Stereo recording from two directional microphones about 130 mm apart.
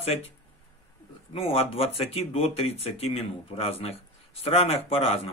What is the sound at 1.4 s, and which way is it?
Speech, 50° left (ahead or behind).